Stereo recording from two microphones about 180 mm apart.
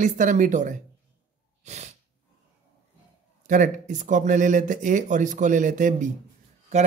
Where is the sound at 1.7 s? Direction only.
40° right (ahead or behind).